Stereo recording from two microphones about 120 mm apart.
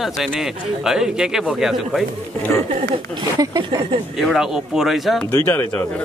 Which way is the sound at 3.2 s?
35° right (ahead or behind).